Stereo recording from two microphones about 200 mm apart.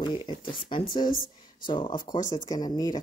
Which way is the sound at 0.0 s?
25° left (ahead or behind).